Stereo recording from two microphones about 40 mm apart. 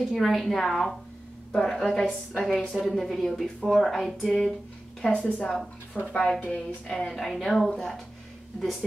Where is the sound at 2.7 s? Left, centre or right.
Centre.